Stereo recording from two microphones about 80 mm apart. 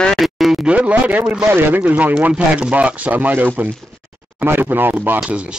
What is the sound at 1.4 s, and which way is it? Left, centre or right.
Speech, right.